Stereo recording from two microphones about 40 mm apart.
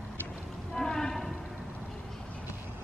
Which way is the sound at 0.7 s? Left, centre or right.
Centre.